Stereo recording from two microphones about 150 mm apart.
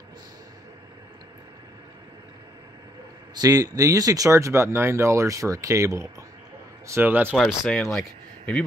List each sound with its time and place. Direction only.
3.3 s speech: 25° right (ahead or behind)
7.3 s speech: 5° left (ahead or behind)